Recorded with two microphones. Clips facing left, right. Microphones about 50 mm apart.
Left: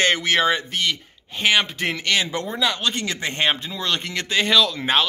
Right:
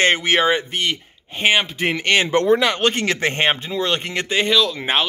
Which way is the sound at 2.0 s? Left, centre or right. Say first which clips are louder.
Right 5 dB; right.